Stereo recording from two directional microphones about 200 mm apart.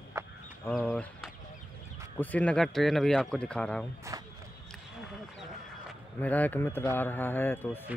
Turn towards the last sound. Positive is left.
turn(degrees=10)  # may be behind; listen again after turning